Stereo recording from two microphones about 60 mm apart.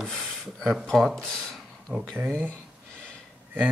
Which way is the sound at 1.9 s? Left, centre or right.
Right.